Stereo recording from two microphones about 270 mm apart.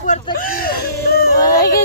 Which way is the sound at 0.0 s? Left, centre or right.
Left.